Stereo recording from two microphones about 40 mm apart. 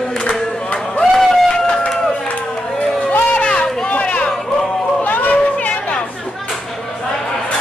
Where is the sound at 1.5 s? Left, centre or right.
Centre.